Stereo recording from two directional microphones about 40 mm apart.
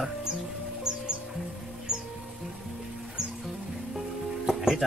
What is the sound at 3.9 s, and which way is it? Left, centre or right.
Music, centre.